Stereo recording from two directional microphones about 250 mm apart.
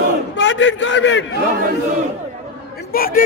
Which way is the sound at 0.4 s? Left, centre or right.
Left.